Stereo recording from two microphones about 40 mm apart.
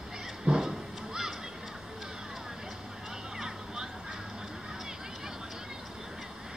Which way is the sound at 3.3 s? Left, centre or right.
Centre.